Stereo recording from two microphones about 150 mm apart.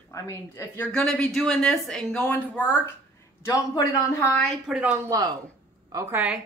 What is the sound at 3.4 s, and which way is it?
Speech, 20° left (ahead or behind).